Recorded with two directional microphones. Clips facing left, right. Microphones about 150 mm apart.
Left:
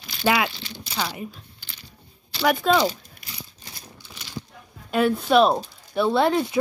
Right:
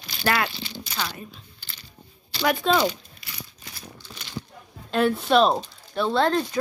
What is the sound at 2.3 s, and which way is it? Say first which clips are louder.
Speech: left 2 dB; centre (ahead or behind).